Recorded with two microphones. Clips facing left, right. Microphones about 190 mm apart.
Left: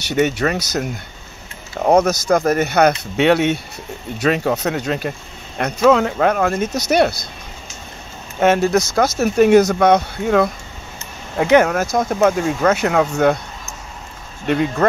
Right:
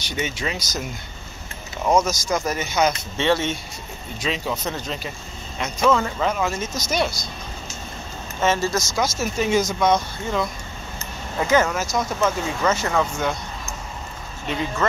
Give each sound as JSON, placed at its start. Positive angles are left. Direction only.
{"t": 0.1, "sound": "speech", "side_deg": 60}
{"t": 8.4, "sound": "speech", "side_deg": 60}
{"t": 14.5, "sound": "speech", "side_deg": 60}